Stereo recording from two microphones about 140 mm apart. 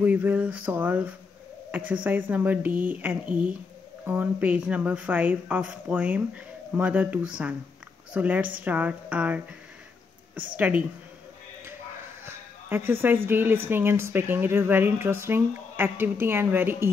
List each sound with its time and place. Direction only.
0.0 s speech: 10° right (ahead or behind)
12.3 s a sound: 15° right (ahead or behind)
13.3 s speech: 15° right (ahead or behind)